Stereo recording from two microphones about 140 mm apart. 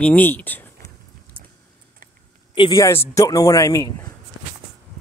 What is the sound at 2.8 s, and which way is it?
A man's voice, 20° left (ahead or behind).